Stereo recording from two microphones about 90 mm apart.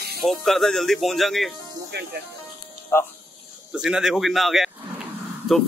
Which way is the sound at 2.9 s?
30° left (ahead or behind).